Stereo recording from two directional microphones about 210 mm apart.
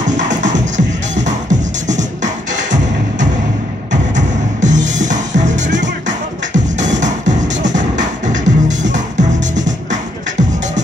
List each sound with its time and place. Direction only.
0.4 s music: 35° right (ahead or behind)